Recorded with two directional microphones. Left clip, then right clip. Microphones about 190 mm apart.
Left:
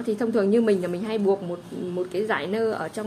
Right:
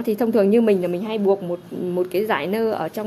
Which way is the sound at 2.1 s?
35° right (ahead or behind).